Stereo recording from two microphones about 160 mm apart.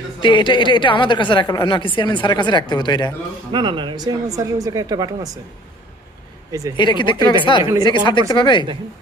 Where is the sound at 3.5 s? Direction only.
30° right (ahead or behind).